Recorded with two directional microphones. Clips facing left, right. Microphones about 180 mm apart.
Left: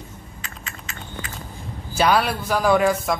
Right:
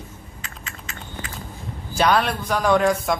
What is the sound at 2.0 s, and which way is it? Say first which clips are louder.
Speech: even; 5° left (ahead or behind).